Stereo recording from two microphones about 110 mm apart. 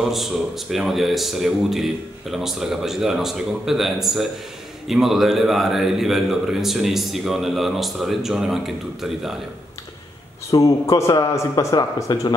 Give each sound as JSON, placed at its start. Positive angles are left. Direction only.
{"t": 0.1, "sound": "a man's voice", "side_deg": 0}
{"t": 10.5, "sound": "speech", "side_deg": 30}